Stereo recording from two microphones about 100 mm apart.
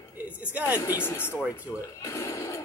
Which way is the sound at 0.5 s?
15° right (ahead or behind).